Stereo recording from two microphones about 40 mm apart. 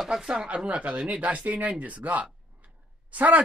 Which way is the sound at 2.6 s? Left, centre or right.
Right.